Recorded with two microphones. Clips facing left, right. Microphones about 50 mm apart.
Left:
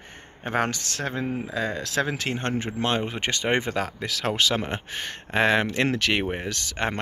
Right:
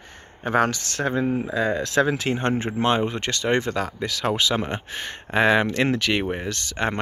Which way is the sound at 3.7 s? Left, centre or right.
Centre.